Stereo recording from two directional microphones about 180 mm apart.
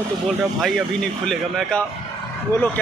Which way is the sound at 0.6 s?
Centre (ahead or behind).